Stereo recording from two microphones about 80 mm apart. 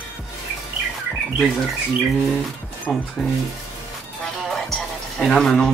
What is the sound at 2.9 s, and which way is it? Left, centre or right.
Speech, centre.